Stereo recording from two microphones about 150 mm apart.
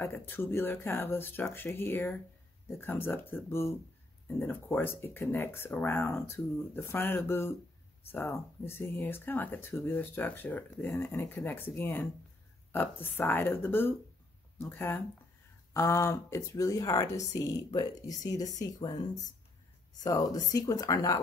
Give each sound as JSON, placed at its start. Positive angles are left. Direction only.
{"t": 0.0, "sound": "speech", "side_deg": 15}
{"t": 20.0, "sound": "speech", "side_deg": 25}